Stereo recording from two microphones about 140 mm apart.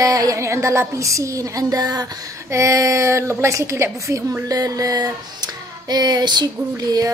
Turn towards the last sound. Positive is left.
turn(degrees=-25)  # may be behind; listen again after turning